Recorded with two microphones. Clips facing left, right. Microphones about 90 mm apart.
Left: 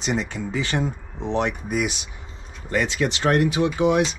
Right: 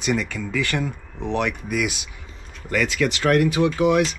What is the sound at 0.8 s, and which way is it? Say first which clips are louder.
Speech: left 1 dB; 25° left (ahead or behind).